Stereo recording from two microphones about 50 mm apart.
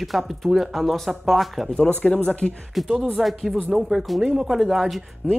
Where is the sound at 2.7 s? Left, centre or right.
Centre.